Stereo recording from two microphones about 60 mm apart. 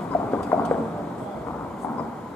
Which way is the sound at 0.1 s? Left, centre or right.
Left.